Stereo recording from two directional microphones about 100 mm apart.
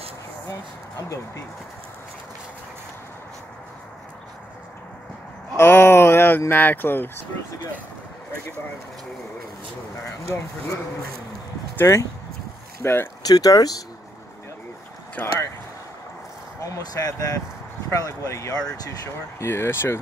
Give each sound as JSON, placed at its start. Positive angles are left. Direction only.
{"t": 5.6, "sound": "speech", "side_deg": 25}
{"t": 11.8, "sound": "speech", "side_deg": 30}
{"t": 13.2, "sound": "speech", "side_deg": 40}
{"t": 15.2, "sound": "speech", "side_deg": 15}
{"t": 16.6, "sound": "speech", "side_deg": 35}